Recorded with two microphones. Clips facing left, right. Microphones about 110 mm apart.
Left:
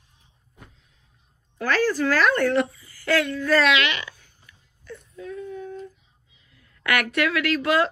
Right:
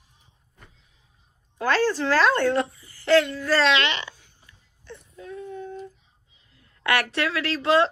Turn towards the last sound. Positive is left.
turn(degrees=-30)  # may be behind; listen again after turning